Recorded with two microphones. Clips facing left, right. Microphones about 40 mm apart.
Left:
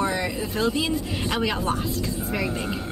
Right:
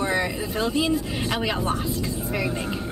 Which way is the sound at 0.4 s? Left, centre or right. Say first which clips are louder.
Even; centre.